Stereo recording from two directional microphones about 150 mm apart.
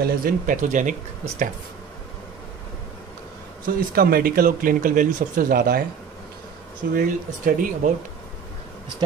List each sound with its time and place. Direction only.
0.0 s speech: 70° right (ahead or behind)
3.6 s speech: 80° right
6.9 s speech: 65° right (ahead or behind)